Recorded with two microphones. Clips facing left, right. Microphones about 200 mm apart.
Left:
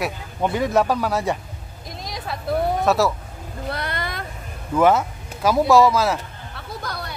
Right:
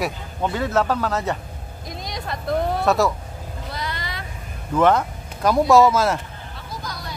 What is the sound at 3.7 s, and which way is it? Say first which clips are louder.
Vehicle: left 4 dB; 60° left (ahead or behind).